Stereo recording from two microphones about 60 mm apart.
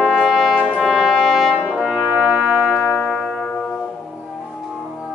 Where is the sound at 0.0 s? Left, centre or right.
Centre.